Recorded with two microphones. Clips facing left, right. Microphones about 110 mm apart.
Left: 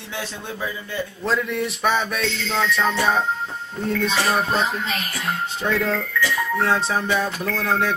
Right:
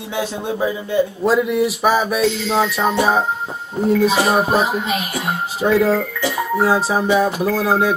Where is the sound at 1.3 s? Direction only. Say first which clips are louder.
Right 6 dB; 5° right (ahead or behind).